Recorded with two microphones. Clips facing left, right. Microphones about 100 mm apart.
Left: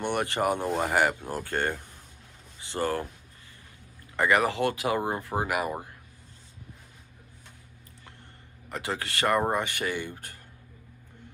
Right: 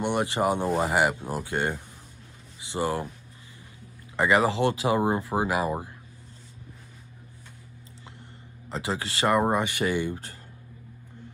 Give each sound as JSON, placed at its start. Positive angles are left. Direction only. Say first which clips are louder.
{"t": 0.0, "sound": "speech", "louder": "right 2 dB", "side_deg": -20}
{"t": 4.2, "sound": "speech", "louder": "right 2 dB", "side_deg": -20}
{"t": 8.6, "sound": "speech", "louder": "right 2 dB", "side_deg": -20}